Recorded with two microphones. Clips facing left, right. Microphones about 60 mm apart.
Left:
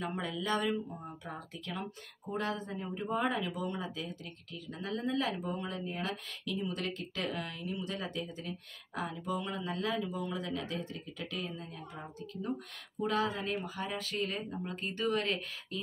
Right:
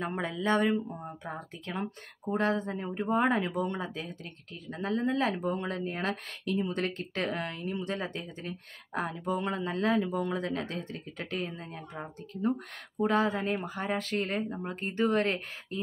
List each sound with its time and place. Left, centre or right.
0.0 s speech: right
5.5 s speech: right